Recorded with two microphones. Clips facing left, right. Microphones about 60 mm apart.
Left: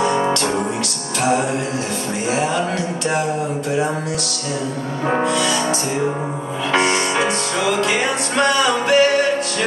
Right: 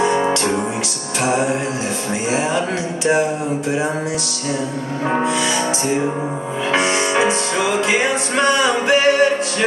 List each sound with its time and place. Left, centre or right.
0.0 s music: centre
1.2 s speech: centre
5.2 s speech: centre
6.7 s music: centre